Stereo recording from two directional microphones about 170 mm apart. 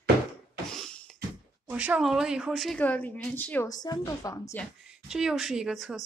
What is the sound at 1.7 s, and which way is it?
A woman's voice, 10° right (ahead or behind).